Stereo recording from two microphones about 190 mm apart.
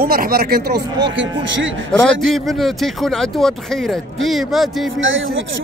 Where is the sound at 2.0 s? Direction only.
Centre (ahead or behind).